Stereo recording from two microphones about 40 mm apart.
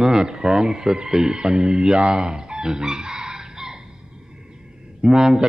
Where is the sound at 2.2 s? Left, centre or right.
Centre.